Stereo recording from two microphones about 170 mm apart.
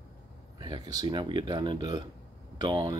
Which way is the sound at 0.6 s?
25° right (ahead or behind).